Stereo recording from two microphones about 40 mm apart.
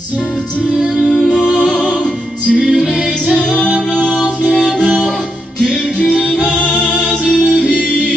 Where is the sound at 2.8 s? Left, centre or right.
Centre.